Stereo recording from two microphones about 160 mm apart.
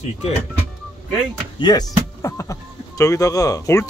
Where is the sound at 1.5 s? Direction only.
30° left (ahead or behind).